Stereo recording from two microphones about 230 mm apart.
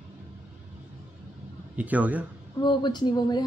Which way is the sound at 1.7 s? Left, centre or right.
Centre.